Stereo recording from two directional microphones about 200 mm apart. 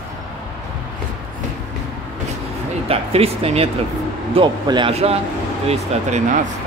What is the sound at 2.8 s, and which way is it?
Speech, 30° right (ahead or behind).